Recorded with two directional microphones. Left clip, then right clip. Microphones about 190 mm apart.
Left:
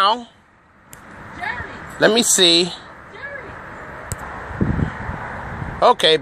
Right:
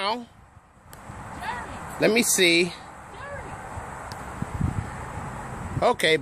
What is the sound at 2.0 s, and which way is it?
Speech, 5° left (ahead or behind).